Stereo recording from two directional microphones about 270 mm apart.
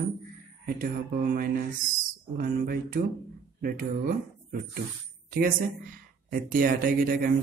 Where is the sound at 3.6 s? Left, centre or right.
Right.